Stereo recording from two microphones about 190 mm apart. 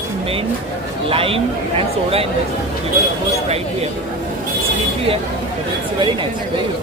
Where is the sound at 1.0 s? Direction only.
30° right (ahead or behind).